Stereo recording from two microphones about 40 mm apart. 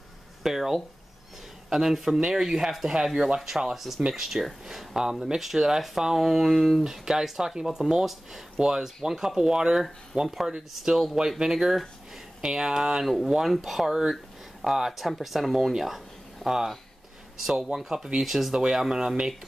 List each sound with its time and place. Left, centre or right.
0.4 s speech: centre
6.8 s speech: centre
13.0 s speech: centre
18.5 s speech: centre